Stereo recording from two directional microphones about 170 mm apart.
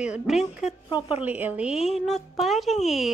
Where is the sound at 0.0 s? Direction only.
5° right (ahead or behind).